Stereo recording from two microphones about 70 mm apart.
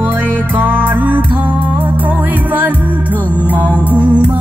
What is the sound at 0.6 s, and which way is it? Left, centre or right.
Music, right.